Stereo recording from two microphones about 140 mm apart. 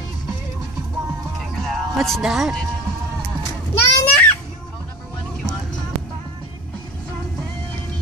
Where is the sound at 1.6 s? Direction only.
Centre (ahead or behind).